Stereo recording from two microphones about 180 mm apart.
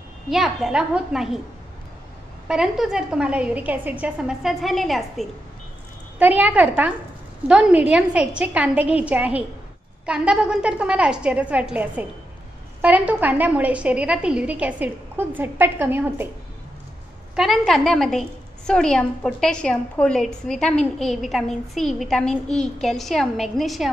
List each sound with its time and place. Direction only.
0.3 s a woman's voice: centre (ahead or behind)
2.4 s a woman's voice: 5° right (ahead or behind)
17.4 s a woman's voice: centre (ahead or behind)